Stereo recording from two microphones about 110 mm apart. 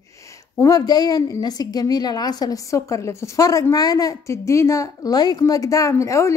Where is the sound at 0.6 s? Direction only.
30° left (ahead or behind).